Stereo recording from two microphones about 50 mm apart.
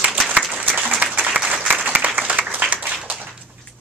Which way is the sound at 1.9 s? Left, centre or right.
Right.